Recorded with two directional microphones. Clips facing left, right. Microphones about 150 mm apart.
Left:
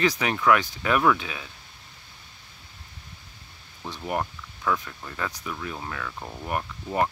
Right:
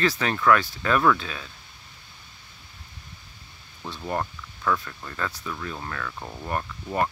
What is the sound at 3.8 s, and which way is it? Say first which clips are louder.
Speech: even; 15° left (ahead or behind).